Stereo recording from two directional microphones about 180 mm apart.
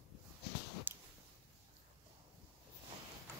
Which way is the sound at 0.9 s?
10° right (ahead or behind).